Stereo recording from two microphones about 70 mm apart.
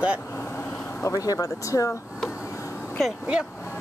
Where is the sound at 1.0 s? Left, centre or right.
Left.